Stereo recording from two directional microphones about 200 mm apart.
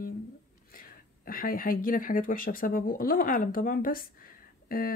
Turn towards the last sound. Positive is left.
turn(degrees=45)  # may be behind; listen again after turning